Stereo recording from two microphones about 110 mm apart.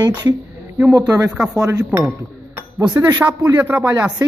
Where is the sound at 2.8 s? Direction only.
15° right (ahead or behind).